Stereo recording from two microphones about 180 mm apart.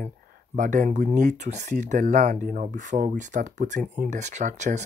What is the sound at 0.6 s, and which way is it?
Speech, 45° right (ahead or behind).